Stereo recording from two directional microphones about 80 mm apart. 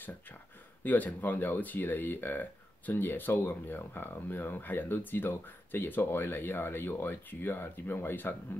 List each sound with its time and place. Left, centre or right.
0.8 s speech: left